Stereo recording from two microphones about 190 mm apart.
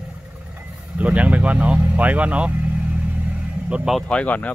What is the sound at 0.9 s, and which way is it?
Speech, 5° right (ahead or behind).